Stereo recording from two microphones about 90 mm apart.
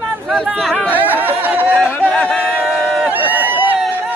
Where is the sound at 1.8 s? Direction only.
15° left (ahead or behind).